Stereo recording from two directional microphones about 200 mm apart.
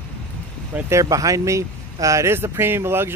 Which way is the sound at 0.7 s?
15° right (ahead or behind).